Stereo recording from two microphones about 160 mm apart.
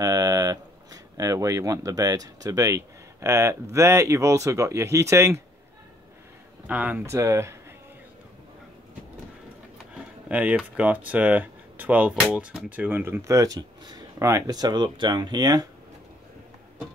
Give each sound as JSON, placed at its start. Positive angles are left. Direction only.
{"t": 0.0, "sound": "speech", "side_deg": -25}
{"t": 6.7, "sound": "speech", "side_deg": -10}
{"t": 10.2, "sound": "speech", "side_deg": -10}